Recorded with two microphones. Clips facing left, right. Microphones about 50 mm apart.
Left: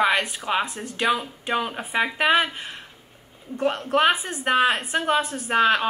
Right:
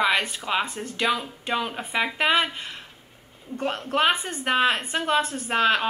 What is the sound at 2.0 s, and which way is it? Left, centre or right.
Speech, centre.